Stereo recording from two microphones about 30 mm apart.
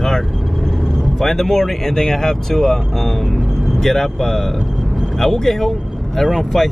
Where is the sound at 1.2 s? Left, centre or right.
Centre.